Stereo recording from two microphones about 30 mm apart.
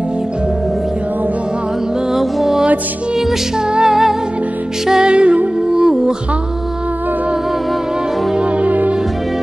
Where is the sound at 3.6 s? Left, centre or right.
Right.